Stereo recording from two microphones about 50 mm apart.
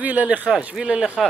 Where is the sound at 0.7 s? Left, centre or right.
Centre.